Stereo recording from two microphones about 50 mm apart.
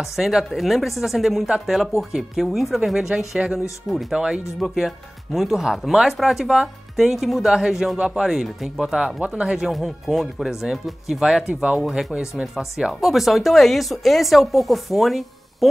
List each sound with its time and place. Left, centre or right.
0.0 s speech: centre
8.8 s speech: centre
9.7 s speech: centre